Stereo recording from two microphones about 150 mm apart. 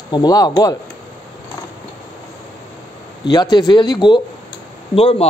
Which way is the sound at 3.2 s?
30° left (ahead or behind).